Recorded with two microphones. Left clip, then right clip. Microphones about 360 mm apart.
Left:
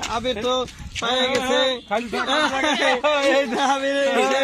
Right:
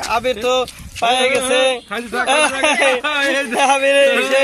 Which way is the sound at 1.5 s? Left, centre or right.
Centre.